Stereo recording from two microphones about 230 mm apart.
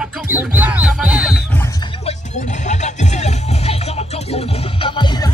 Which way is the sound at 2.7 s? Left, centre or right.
Left.